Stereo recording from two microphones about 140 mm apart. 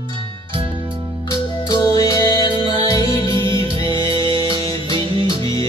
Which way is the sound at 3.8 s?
35° right (ahead or behind).